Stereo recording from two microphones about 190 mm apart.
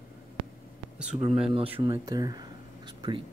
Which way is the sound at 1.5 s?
30° right (ahead or behind).